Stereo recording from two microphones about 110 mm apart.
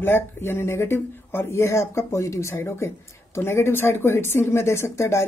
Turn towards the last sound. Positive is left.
turn(degrees=25)  # may be behind; listen again after turning